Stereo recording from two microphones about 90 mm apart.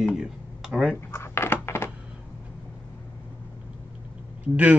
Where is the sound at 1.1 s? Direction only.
30° left (ahead or behind).